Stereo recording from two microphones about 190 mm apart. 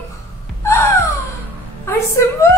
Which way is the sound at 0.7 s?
15° left (ahead or behind).